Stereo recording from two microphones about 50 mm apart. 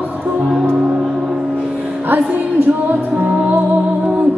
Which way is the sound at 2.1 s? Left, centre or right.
Right.